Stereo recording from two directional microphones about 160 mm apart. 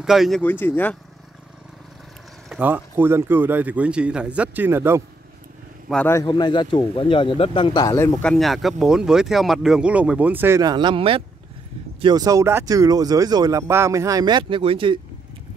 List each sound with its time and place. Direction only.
0.0 s speech: centre (ahead or behind)
0.4 s speech: 10° left (ahead or behind)
2.5 s a man's voice: 10° right (ahead or behind)
5.9 s speech: centre (ahead or behind)
6.2 s speech: 30° left (ahead or behind)
8.2 s speech: 5° left (ahead or behind); by 10.6 s 15° right (ahead or behind)
10.6 s speech: 30° right (ahead or behind)